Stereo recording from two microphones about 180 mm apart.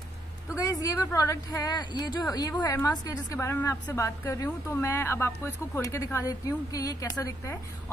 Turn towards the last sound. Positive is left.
turn(degrees=15)  # may be behind; listen again after turning